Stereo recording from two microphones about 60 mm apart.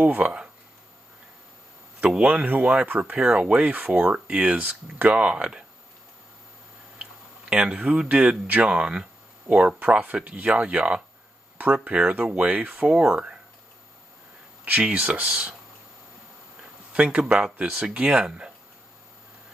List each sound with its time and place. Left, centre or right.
0.0 s speech: right
2.0 s speech: centre
7.0 s tick-tock: centre
8.5 s speech: right
14.6 s speech: right
16.9 s speech: centre